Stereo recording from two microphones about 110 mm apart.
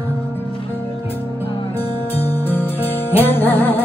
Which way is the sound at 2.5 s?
20° left (ahead or behind).